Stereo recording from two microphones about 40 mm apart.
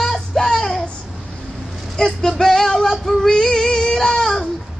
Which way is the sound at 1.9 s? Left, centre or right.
Centre.